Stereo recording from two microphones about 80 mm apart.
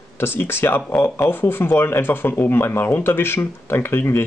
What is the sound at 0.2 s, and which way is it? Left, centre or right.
Speech, left.